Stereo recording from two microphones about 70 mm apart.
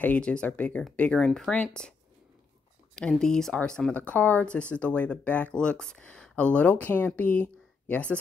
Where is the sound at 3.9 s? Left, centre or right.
Left.